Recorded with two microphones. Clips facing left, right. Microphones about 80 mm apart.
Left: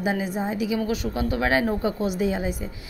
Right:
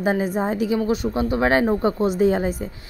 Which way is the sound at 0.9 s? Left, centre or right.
Right.